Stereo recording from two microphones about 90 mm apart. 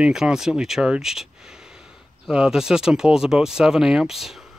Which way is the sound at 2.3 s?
10° right (ahead or behind).